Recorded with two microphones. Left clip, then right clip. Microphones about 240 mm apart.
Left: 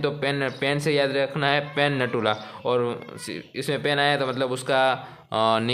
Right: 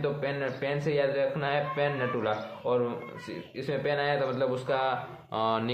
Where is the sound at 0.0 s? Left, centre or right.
Left.